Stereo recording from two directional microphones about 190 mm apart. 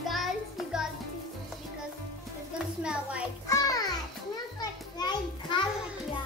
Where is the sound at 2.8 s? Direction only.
5° right (ahead or behind).